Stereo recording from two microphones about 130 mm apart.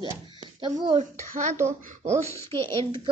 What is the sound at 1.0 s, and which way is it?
Speech, 70° right (ahead or behind).